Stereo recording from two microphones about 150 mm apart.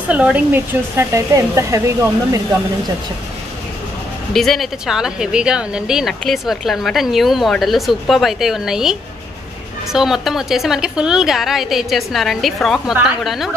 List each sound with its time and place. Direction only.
0.1 s speech: 10° right (ahead or behind)
4.3 s speech: centre (ahead or behind)
9.9 s speech: centre (ahead or behind)